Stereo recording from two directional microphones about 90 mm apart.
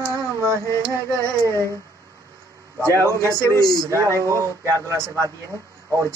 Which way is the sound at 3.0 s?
35° right (ahead or behind).